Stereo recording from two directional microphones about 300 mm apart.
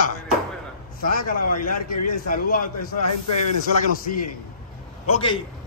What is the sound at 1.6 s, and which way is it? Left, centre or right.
Speech, left.